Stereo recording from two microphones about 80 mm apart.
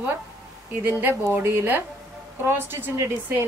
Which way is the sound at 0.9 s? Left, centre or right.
Right.